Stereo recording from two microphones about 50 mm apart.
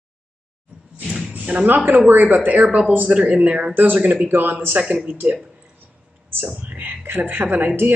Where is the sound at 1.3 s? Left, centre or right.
Right.